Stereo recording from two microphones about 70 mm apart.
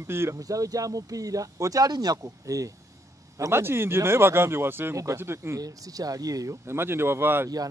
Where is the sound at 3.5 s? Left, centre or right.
Right.